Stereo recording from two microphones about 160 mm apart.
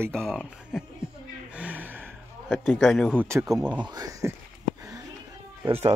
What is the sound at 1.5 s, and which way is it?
Gasp, 10° right (ahead or behind).